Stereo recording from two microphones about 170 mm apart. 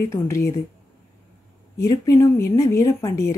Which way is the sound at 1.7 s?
20° left (ahead or behind).